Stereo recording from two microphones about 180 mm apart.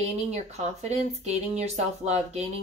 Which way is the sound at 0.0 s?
40° right (ahead or behind).